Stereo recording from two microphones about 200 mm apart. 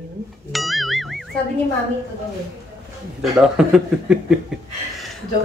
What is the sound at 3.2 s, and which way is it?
Speech, 5° right (ahead or behind).